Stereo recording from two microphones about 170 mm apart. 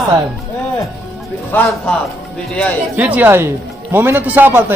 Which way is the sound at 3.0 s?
10° right (ahead or behind).